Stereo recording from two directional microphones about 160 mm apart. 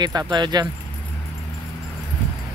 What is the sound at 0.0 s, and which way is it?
Speech, 25° right (ahead or behind).